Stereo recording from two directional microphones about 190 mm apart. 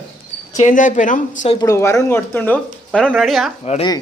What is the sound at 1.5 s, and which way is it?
Speech, 15° left (ahead or behind).